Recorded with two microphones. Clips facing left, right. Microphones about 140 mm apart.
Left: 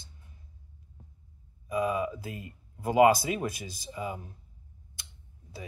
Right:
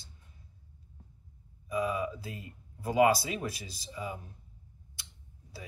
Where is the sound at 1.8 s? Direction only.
20° left (ahead or behind).